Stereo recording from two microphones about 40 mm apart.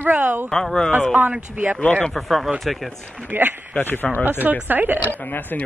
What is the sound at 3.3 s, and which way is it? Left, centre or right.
Speech, right.